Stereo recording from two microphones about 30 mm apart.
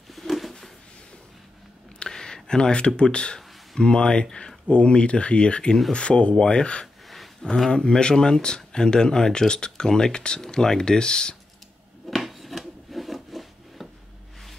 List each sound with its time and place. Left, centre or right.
0.1 s a sound: centre
2.0 s a sound: centre
3.0 s speech: left
7.4 s speech: centre
7.7 s speech: left
12.1 s filing: centre